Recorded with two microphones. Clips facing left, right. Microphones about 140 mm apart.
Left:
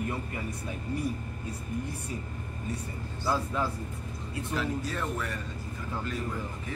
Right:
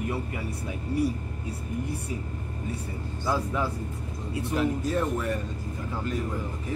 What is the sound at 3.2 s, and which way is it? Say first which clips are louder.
Speech: right 2 dB; 10° right (ahead or behind).